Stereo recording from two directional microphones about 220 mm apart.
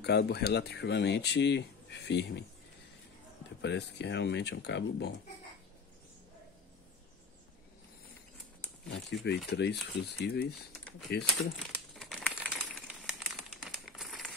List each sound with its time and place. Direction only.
0.0 s speech: 50° left (ahead or behind)
3.6 s speech: 50° left (ahead or behind)
9.5 s speech: 50° left (ahead or behind)
11.7 s crumpling: 5° left (ahead or behind)
12.4 s coin: 5° right (ahead or behind)
13.8 s a sound: centre (ahead or behind)